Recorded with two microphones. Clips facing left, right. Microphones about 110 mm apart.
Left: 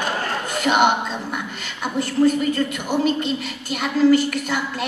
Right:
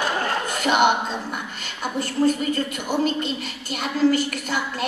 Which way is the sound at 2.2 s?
45° right (ahead or behind).